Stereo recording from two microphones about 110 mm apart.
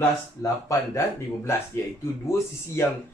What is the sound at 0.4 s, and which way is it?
Speech, 30° left (ahead or behind).